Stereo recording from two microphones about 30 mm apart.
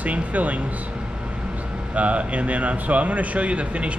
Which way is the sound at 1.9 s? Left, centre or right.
Right.